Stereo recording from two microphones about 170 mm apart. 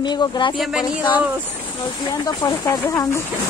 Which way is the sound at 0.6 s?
5° right (ahead or behind).